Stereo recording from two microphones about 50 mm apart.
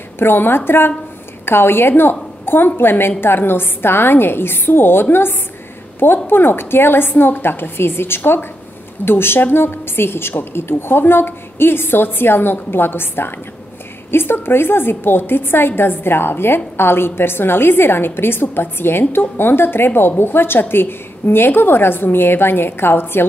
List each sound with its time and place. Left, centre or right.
0.2 s a woman's voice: left